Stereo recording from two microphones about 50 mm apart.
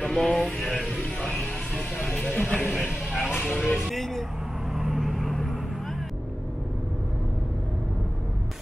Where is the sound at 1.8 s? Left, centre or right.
Centre.